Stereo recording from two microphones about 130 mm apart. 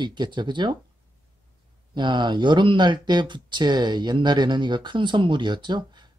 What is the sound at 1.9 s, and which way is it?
Speech, 35° right (ahead or behind).